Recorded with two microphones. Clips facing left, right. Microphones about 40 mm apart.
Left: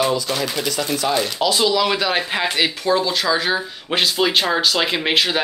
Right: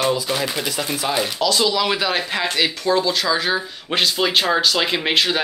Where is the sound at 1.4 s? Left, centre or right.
Centre.